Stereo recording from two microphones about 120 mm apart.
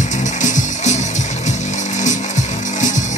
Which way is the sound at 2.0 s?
90° left.